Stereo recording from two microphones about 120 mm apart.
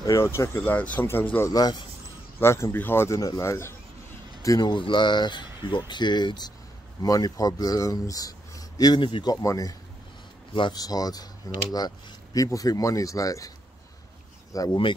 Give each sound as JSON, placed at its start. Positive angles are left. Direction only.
{"t": 0.0, "sound": "speech", "side_deg": 25}
{"t": 1.5, "sound": "speech", "side_deg": 35}
{"t": 2.4, "sound": "speech", "side_deg": 20}
{"t": 9.3, "sound": "speech", "side_deg": 30}
{"t": 10.5, "sound": "speech", "side_deg": 40}
{"t": 14.5, "sound": "speech", "side_deg": 30}